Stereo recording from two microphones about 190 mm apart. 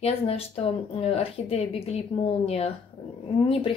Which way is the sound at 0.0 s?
30° left (ahead or behind).